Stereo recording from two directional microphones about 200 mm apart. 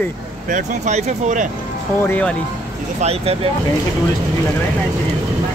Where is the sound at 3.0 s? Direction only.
30° right (ahead or behind).